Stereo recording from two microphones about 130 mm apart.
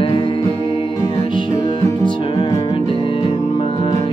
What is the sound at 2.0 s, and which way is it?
Music, 35° left (ahead or behind).